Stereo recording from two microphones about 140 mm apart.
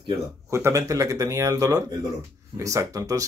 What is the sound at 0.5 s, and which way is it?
Speech, 20° right (ahead or behind).